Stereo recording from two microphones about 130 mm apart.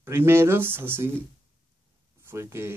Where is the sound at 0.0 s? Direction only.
20° right (ahead or behind).